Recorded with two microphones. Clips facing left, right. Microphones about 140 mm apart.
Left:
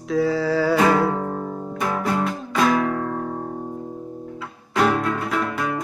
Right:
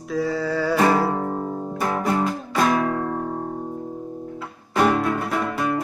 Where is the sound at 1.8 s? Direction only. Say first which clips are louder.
Even; 15° right (ahead or behind).